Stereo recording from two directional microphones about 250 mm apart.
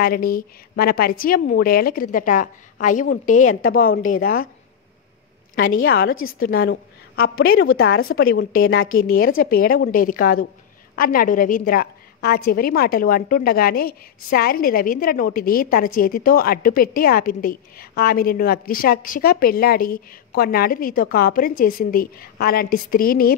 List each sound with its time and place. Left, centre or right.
0.0 s a woman's voice: left
5.6 s a woman's voice: left
7.3 s a woman's voice: left
8.2 s a woman's voice: left